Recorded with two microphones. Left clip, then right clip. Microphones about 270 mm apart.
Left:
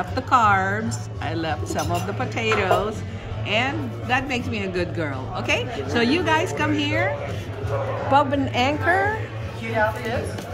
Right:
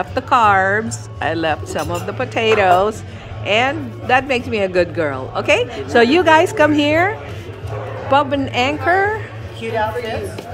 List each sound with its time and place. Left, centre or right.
0.1 s a woman's voice: centre